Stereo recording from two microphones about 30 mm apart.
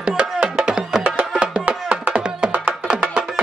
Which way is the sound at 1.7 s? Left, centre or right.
Right.